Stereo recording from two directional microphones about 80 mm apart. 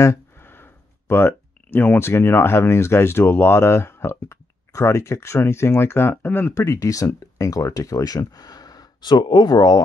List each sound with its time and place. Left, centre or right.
0.0 s speech: left
6.5 s speech: left